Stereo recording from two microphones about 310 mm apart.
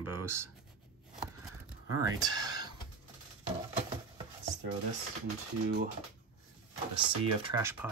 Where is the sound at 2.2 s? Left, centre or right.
Centre.